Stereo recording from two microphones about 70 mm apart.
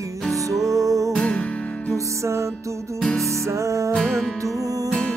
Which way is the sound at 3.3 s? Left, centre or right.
Right.